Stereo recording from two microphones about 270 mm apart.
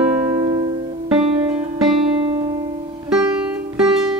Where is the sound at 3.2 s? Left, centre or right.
Centre.